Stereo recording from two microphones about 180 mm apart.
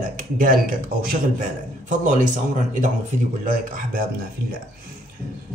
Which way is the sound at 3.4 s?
50° right (ahead or behind).